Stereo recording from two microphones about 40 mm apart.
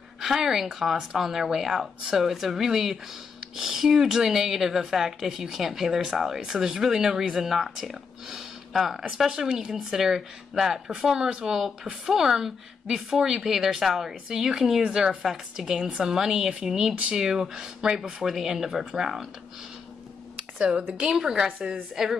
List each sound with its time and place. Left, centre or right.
0.2 s speech: centre
9.3 s a woman's voice: centre
14.8 s a woman's voice: right
20.3 s a sound: right
21.2 s speech: centre